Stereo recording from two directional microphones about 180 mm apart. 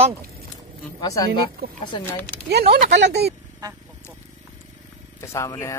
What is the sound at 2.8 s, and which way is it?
Speech, 70° right (ahead or behind).